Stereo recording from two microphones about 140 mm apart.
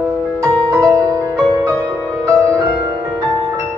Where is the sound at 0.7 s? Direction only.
25° right (ahead or behind).